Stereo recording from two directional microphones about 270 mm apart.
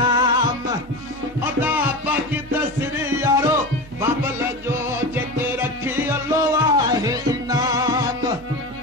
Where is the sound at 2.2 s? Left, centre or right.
Centre.